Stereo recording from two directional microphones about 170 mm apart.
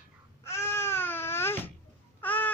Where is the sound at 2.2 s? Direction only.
10° left (ahead or behind).